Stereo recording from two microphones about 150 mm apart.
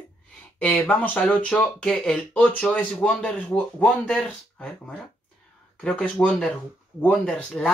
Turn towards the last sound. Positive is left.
turn(degrees=5)  # may be behind; listen again after turning